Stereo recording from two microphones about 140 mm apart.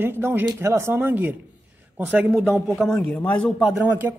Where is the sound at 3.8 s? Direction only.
10° right (ahead or behind).